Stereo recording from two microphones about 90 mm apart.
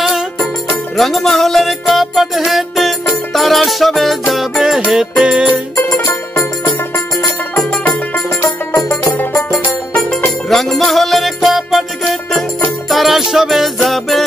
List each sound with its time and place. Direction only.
0.0 s music: centre (ahead or behind)
5.9 s music: 35° left (ahead or behind)
8.5 s music: 40° left (ahead or behind)
9.5 s music: 5° left (ahead or behind)